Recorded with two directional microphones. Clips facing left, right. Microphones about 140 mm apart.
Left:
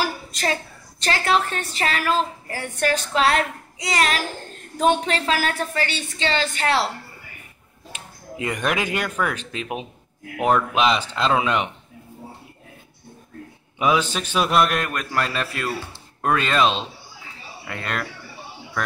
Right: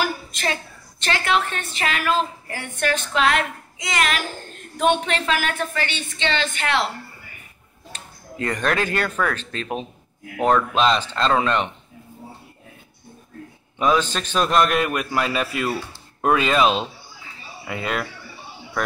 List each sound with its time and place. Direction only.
0.0 s a woman's voice: 35° left (ahead or behind)
7.9 s speech: 10° left (ahead or behind)
13.7 s a man's voice: 10° left (ahead or behind)